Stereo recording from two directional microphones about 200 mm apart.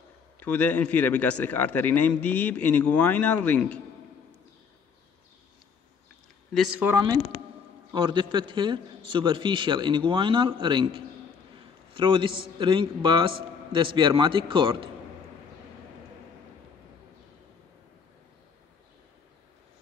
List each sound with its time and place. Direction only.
0.4 s a man's voice: 10° left (ahead or behind)
6.5 s speech: centre (ahead or behind)
7.9 s a man's voice: 20° right (ahead or behind)